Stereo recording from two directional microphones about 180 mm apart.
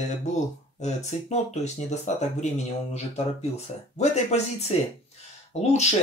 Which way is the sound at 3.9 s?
40° left (ahead or behind).